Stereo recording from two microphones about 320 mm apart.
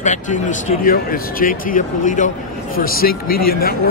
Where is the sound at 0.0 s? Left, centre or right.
Left.